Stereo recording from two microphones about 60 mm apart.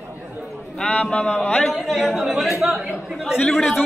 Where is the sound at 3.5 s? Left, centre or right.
Centre.